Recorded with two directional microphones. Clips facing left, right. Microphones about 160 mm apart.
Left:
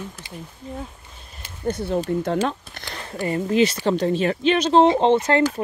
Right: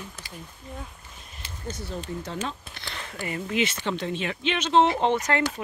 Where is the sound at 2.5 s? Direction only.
45° left (ahead or behind).